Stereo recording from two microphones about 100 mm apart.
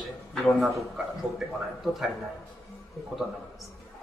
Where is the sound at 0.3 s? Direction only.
Centre (ahead or behind).